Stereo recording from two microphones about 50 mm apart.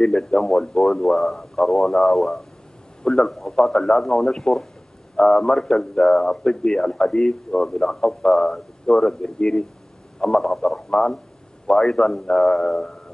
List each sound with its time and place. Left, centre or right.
0.0 s a man's voice: centre